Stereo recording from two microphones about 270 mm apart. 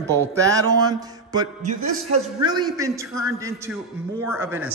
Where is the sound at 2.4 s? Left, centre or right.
Centre.